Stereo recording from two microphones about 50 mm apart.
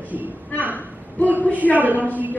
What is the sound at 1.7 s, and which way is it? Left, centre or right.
Speech, right.